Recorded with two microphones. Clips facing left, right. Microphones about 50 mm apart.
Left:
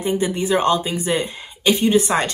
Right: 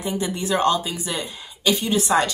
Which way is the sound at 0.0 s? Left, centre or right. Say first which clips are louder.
Left 5 dB; left.